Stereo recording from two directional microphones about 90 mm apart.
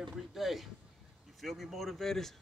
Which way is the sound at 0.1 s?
Centre (ahead or behind).